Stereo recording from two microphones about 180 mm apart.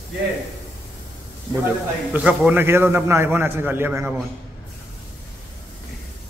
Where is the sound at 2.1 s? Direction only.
10° right (ahead or behind).